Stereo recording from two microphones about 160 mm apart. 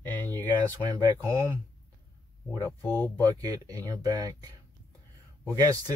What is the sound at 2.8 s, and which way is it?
Speech, 10° left (ahead or behind).